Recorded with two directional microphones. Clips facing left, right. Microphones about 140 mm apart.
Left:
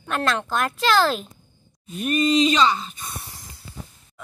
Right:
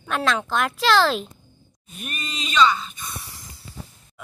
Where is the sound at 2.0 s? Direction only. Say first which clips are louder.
Left 15 dB; 35° left (ahead or behind).